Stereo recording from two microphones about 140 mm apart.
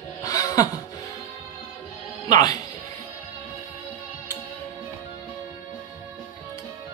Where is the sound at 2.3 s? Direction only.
25° left (ahead or behind).